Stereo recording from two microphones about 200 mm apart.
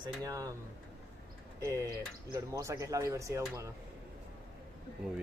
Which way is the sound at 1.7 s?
15° right (ahead or behind).